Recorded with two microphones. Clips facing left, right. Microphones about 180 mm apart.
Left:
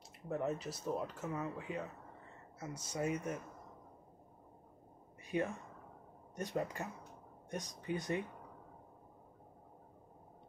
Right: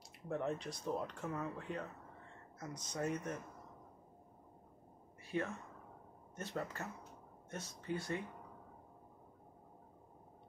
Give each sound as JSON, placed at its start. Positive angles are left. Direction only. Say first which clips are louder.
{"t": 0.3, "sound": "speech", "louder": "left 1 dB", "side_deg": 5}
{"t": 5.2, "sound": "a sound", "louder": "left 3 dB", "side_deg": 15}
{"t": 6.3, "sound": "speech", "louder": "left 4 dB", "side_deg": 15}